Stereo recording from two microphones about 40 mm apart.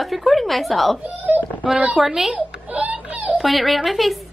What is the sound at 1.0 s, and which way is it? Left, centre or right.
Wail, right.